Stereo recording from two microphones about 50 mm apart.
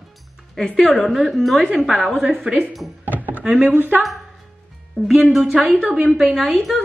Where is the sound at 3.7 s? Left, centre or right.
Right.